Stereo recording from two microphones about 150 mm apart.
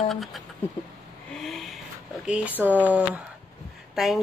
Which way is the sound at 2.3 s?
10° right (ahead or behind).